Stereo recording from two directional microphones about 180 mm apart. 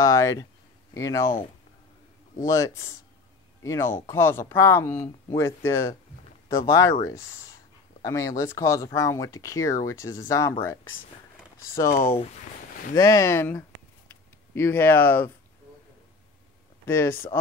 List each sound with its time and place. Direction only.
0.0 s speech: 20° left (ahead or behind)
16.8 s speech: 15° left (ahead or behind)